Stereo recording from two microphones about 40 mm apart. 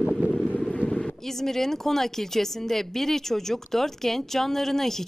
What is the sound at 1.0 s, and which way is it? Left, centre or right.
Speech, centre.